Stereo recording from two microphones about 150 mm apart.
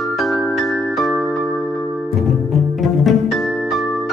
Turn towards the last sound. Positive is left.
turn(degrees=0)  # may be behind; listen again after turning